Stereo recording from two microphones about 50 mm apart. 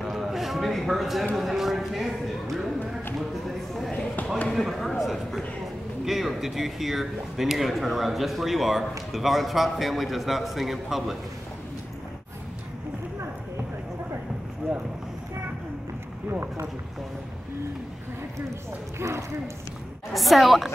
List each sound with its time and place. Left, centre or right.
0.0 s a sound: centre
1.3 s speech: centre
2.4 s speech: centre
3.2 s a sound: centre
4.5 s speech: centre
14.6 s boat: right
18.9 s speech: right
20.2 s speech: centre